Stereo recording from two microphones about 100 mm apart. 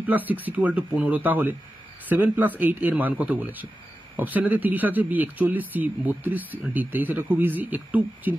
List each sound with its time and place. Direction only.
0.0 s speech: 15° right (ahead or behind)